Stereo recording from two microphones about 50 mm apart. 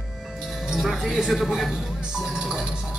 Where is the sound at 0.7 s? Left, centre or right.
Centre.